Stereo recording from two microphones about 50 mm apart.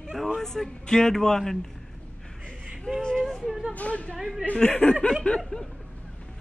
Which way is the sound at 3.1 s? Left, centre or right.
Centre.